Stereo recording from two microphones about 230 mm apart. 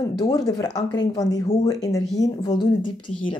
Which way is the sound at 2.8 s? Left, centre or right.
Left.